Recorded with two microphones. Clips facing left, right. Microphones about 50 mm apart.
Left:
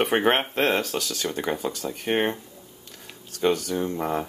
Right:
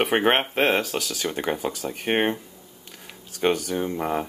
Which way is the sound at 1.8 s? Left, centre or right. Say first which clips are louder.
Right 1 dB; right.